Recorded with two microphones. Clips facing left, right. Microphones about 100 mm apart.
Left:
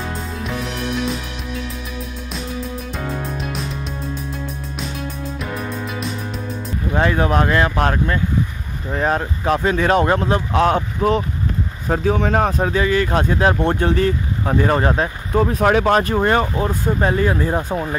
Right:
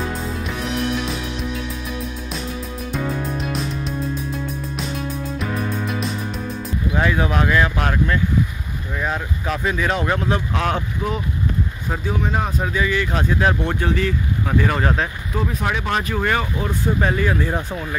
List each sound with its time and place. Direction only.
0.5 s music: centre (ahead or behind)
2.9 s music: centre (ahead or behind)
5.4 s music: centre (ahead or behind)
6.9 s speech: 40° left (ahead or behind)
11.0 s speech: 65° left (ahead or behind)
12.4 s speech: 40° left (ahead or behind)
15.3 s speech: 45° left (ahead or behind)
16.2 s speech: 35° left (ahead or behind)